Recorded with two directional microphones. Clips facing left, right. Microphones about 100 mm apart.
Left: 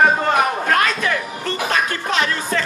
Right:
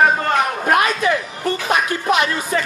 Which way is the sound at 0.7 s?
15° right (ahead or behind).